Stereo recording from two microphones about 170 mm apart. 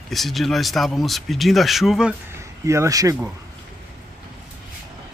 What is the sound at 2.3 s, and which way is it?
Speech, 15° right (ahead or behind).